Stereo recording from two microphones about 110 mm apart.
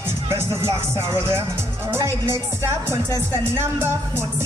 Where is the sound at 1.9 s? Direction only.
25° right (ahead or behind).